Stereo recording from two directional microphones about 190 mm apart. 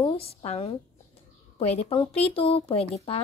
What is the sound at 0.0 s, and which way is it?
A woman's voice, 30° left (ahead or behind).